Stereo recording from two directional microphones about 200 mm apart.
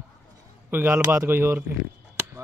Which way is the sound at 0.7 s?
10° right (ahead or behind).